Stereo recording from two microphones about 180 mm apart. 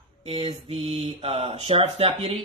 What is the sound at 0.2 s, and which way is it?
Speech, 30° right (ahead or behind).